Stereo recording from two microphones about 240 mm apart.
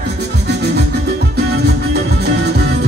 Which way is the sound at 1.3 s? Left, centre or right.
Right.